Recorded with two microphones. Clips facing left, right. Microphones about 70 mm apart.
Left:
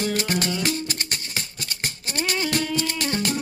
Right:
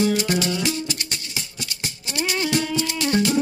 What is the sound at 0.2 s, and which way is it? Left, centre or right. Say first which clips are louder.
Music: right 2 dB; left.